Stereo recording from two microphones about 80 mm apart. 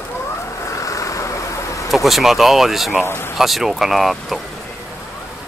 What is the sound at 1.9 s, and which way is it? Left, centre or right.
Speech, centre.